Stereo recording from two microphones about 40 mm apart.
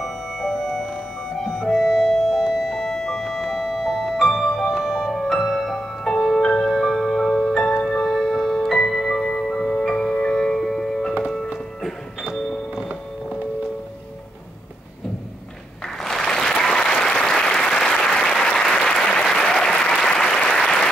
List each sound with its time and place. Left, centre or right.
0.0 s music: centre
4.6 s music: centre
5.1 s music: centre
8.1 s music: centre
16.0 s applause: centre